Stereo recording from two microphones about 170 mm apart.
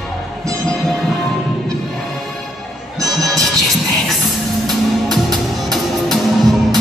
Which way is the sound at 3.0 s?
20° right (ahead or behind).